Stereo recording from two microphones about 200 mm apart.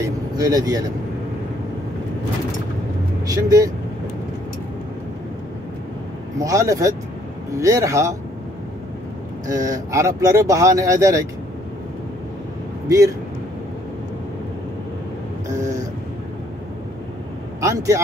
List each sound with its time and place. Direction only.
0.0 s speech: 20° right (ahead or behind)
3.3 s speech: 15° right (ahead or behind)
6.4 s speech: 15° right (ahead or behind)
9.5 s speech: 15° right (ahead or behind)
12.8 s a man's voice: 15° right (ahead or behind)
17.6 s speech: 15° right (ahead or behind)